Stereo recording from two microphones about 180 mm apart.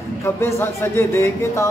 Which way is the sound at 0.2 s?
15° left (ahead or behind).